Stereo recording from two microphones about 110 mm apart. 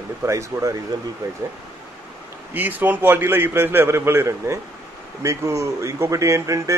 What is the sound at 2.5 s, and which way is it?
Speech, 15° right (ahead or behind).